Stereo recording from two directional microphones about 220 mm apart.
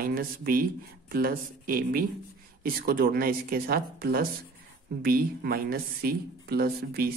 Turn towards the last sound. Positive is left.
turn(degrees=-45)  # may be behind; listen again after turning